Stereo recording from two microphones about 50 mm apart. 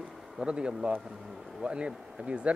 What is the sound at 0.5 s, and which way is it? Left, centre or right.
Speech, right.